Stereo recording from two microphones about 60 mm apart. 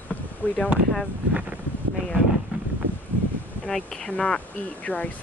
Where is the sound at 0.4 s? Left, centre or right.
Left.